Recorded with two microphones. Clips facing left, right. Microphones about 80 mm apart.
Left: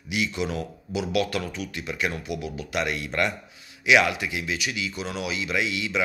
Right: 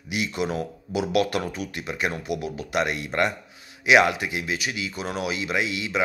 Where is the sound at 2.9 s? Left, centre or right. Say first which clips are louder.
Right 2 dB; right.